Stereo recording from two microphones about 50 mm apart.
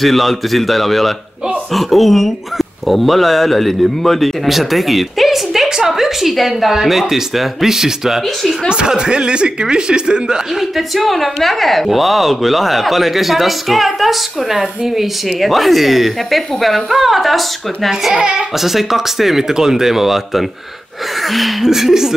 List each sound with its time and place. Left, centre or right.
0.0 s speech: centre
11.0 s speech: centre